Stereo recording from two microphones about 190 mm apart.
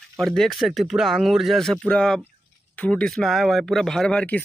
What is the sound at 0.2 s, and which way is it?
Speech, centre (ahead or behind).